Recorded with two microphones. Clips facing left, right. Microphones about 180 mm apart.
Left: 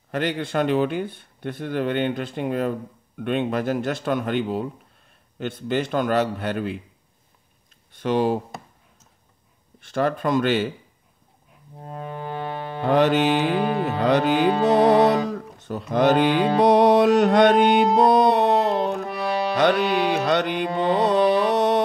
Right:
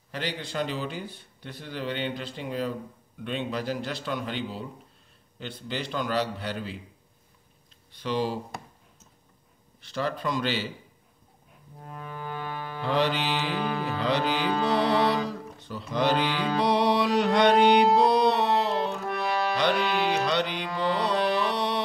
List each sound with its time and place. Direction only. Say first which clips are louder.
0.1 s music: left 8 dB; 50° left (ahead or behind)
7.9 s music: left 7 dB; 50° left (ahead or behind)
9.8 s music: left 7 dB; 50° left (ahead or behind)
11.8 s music: left 6 dB; 30° left (ahead or behind)
12.8 s music: left 8 dB; 50° left (ahead or behind)
21.0 s a sound: left 8 dB; 50° left (ahead or behind)